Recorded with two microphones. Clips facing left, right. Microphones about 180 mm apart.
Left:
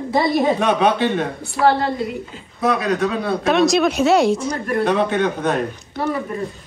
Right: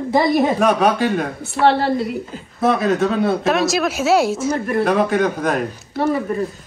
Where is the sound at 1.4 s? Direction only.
25° right (ahead or behind).